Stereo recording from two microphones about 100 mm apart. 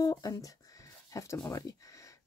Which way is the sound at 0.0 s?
40° left (ahead or behind).